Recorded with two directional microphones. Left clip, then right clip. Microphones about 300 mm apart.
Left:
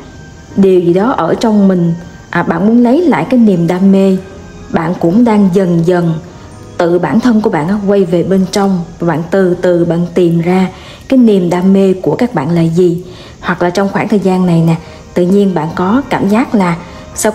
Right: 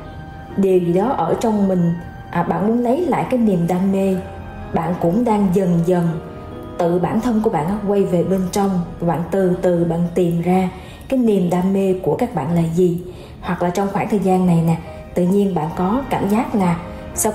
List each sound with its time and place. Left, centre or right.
0.6 s a woman's voice: left
5.2 s a woman's voice: left